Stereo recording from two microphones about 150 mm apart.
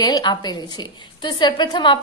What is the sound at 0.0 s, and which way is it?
A woman's voice, 30° left (ahead or behind).